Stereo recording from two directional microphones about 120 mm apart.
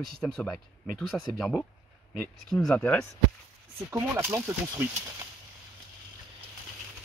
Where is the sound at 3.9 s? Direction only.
20° right (ahead or behind).